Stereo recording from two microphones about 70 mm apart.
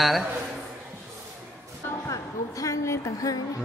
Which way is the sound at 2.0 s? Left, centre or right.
Left.